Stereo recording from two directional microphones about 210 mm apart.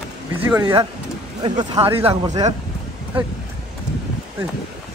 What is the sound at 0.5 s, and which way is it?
Speech, 15° right (ahead or behind).